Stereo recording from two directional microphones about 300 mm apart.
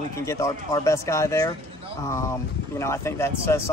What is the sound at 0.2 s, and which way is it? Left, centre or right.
Speech, centre.